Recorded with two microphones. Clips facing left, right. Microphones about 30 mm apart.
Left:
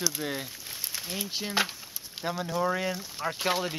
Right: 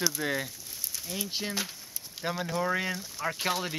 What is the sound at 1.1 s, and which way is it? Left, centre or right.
Speech, left.